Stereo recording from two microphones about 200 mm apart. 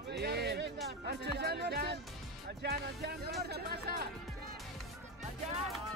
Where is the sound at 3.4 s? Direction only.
50° right (ahead or behind).